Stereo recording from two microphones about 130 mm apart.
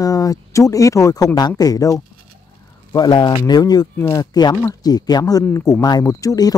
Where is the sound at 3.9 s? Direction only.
15° left (ahead or behind).